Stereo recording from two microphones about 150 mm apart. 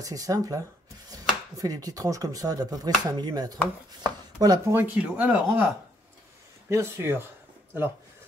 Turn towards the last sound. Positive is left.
turn(degrees=-15)  # may be behind; listen again after turning